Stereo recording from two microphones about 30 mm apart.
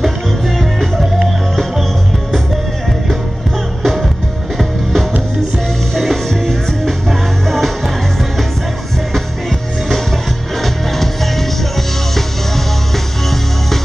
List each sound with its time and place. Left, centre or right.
0.6 s music: centre
3.8 s music: centre
5.9 s music: centre
9.1 s music: centre
12.5 s music: centre